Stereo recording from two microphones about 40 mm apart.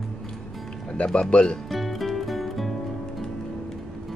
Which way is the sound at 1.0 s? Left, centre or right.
Left.